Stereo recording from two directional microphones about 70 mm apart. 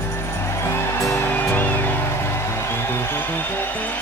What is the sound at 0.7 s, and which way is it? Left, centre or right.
Music, left.